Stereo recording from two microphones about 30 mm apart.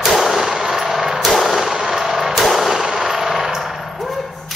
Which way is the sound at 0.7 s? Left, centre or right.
Centre.